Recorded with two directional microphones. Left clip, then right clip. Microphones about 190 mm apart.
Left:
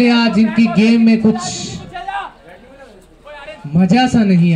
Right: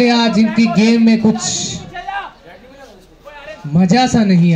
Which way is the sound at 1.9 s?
30° left (ahead or behind).